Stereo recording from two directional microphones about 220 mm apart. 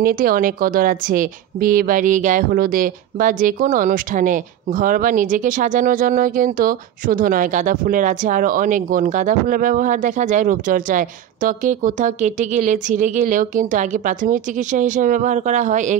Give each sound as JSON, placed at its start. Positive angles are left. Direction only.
{"t": 0.0, "sound": "a woman's voice", "side_deg": -40}